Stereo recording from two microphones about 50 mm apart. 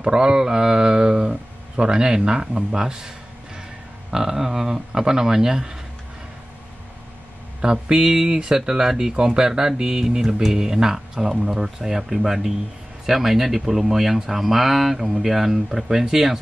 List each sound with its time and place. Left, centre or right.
0.0 s speech: centre
4.1 s speech: centre
7.6 s speech: centre